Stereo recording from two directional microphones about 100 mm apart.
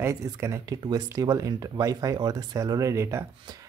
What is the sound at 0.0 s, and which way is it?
Speech, 30° right (ahead or behind).